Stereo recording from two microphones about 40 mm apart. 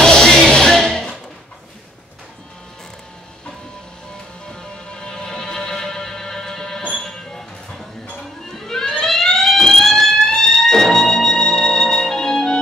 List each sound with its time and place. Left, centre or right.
0.0 s music: centre
0.7 s a sound: centre
4.5 s music: left
6.9 s train: centre
8.5 s fire alarm: centre